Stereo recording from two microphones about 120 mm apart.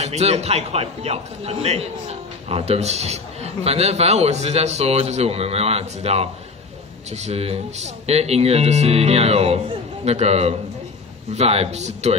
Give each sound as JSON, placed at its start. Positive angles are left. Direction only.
{"t": 0.0, "sound": "a man's voice", "side_deg": -65}